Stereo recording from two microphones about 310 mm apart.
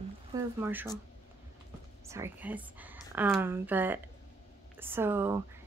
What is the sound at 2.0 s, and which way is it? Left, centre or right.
Speech, centre.